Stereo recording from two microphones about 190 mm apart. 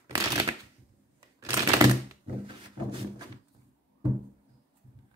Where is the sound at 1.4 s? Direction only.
15° right (ahead or behind).